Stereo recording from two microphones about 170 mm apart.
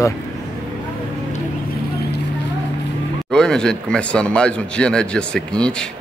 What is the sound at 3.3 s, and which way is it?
Speech, 5° left (ahead or behind).